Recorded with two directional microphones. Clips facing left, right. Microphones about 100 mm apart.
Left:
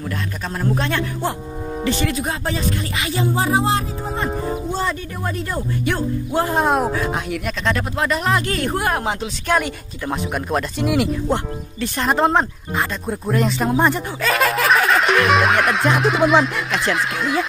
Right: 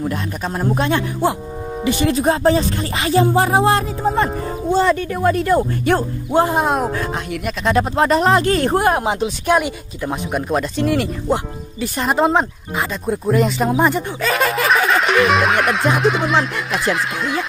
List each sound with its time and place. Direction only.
0.0 s a man's voice: 20° right (ahead or behind)
2.0 s speech: 35° right (ahead or behind)
3.2 s music: 50° right (ahead or behind)
4.7 s speech: 85° right
6.5 s speech: centre (ahead or behind)
7.7 s speech: 30° right (ahead or behind)
8.9 s speech: 20° right (ahead or behind)
10.0 s speech: centre (ahead or behind)